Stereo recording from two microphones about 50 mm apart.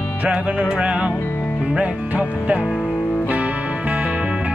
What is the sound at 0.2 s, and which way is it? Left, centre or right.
Music, right.